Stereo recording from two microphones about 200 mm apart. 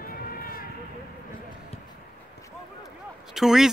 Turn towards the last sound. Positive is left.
turn(degrees=0)  # may be behind; listen again after turning